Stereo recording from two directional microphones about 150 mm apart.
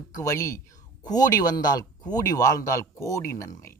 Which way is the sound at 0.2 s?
20° left (ahead or behind).